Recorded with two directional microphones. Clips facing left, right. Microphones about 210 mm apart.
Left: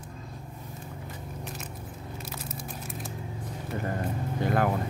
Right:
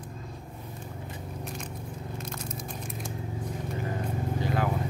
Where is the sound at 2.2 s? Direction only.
5° left (ahead or behind).